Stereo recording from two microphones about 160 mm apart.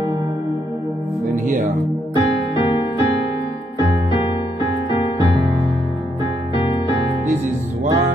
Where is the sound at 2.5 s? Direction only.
35° left (ahead or behind).